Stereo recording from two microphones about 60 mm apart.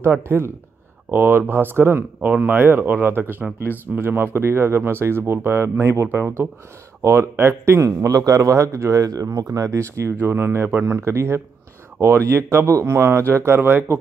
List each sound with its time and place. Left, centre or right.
0.0 s speech: right
2.2 s speech: right
6.0 s speech: right
7.0 s speech: right
10.2 s speech: right